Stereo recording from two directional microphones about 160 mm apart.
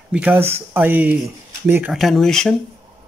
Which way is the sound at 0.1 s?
10° right (ahead or behind).